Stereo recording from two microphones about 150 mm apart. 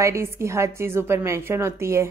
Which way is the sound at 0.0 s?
20° right (ahead or behind).